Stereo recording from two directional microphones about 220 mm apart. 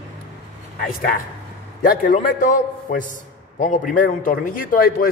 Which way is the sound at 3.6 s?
35° left (ahead or behind).